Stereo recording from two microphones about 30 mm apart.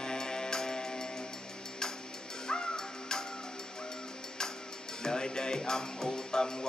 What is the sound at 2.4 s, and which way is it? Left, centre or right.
Music, left.